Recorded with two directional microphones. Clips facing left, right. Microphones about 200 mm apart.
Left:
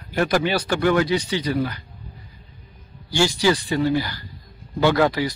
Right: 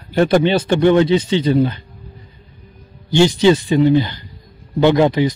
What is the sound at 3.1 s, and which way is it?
Speech, 20° right (ahead or behind).